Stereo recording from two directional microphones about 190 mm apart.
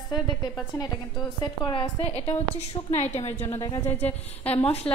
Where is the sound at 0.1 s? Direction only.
25° left (ahead or behind).